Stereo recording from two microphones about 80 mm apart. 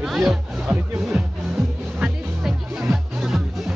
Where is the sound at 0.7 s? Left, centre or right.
Centre.